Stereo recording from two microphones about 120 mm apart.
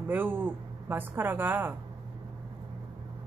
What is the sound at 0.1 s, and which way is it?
A woman's voice, 15° right (ahead or behind).